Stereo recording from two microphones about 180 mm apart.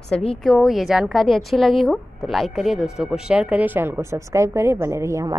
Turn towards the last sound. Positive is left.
turn(degrees=-15)  # may be behind; listen again after turning